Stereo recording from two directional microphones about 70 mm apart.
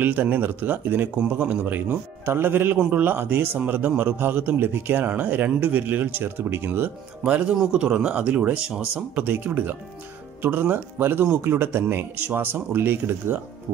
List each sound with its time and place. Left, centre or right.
0.0 s a man's voice: right
1.9 s a man's voice: right
7.2 s a man's voice: centre
9.1 s a man's voice: right